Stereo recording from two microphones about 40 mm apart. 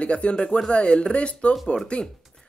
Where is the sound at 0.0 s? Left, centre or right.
Left.